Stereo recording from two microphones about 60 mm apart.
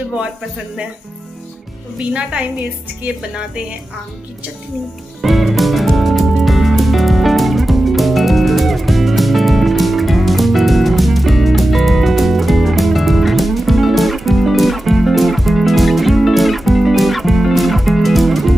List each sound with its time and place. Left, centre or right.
2.0 s speech: centre
5.2 s music: centre